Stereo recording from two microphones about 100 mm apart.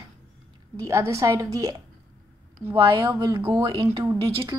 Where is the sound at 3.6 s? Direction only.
55° right (ahead or behind).